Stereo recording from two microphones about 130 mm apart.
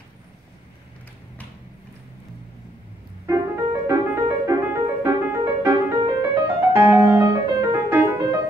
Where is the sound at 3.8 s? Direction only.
25° right (ahead or behind).